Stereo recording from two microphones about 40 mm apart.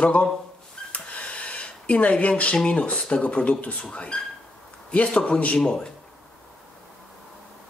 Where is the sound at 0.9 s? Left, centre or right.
Left.